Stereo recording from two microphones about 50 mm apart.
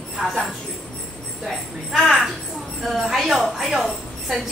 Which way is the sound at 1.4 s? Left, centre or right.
Centre.